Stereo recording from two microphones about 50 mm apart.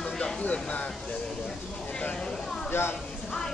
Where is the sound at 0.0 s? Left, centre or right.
Centre.